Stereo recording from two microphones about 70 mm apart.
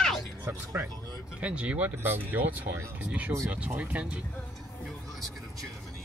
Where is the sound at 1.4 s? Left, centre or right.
Centre.